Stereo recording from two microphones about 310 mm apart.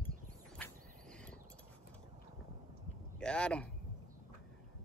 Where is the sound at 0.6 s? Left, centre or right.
Centre.